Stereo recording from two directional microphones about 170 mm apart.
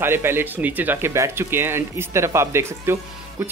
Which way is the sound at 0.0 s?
15° right (ahead or behind).